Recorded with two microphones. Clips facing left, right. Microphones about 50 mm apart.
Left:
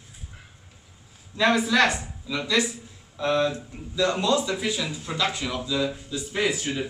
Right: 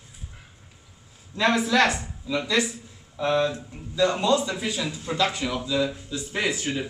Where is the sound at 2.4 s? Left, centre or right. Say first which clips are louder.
Left 3 dB; centre.